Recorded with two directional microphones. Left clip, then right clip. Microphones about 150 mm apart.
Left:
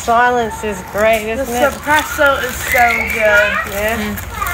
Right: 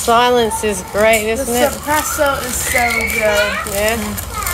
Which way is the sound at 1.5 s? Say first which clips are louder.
Left 4 dB; 40° left (ahead or behind).